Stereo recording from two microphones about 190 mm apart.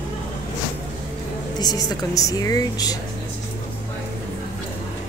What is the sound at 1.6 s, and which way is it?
A woman's voice, 20° left (ahead or behind).